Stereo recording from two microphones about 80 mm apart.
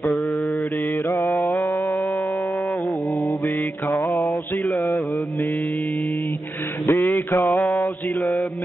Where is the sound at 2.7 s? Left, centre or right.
Centre.